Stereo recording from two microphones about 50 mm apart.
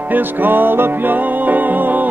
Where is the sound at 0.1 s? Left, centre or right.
Right.